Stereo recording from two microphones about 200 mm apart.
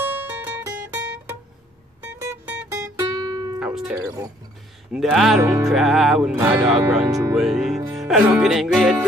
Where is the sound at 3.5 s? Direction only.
5° right (ahead or behind).